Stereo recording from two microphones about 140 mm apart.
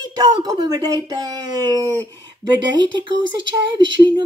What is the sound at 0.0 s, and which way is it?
Speech, 25° right (ahead or behind).